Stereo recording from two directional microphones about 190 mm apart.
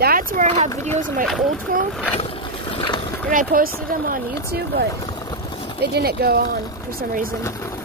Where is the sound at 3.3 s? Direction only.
50° right (ahead or behind).